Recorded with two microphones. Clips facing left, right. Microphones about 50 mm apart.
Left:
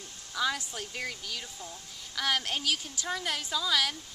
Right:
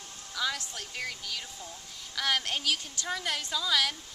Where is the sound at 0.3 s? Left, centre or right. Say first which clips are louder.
Left 2 dB; centre.